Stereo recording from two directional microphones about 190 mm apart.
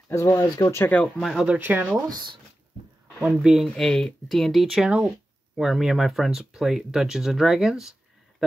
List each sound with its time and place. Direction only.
0.1 s speech: 15° left (ahead or behind); by 2.0 s 10° right (ahead or behind)
2.0 s speech: 20° right (ahead or behind)
3.2 s speech: 5° right (ahead or behind)